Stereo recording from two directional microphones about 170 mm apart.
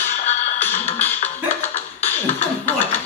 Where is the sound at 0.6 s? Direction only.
10° left (ahead or behind).